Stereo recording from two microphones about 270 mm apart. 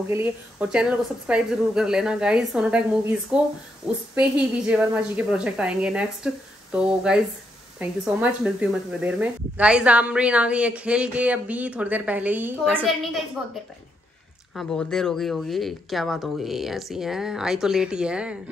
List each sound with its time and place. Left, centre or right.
0.1 s speech: centre
14.5 s speech: centre